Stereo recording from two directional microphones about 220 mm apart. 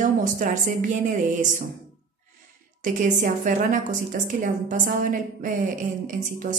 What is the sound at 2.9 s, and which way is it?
A woman's voice, 35° right (ahead or behind).